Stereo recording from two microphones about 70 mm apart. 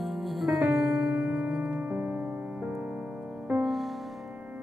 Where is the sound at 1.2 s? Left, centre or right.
Centre.